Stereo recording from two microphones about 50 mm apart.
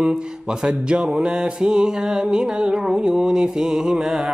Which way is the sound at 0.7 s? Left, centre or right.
Centre.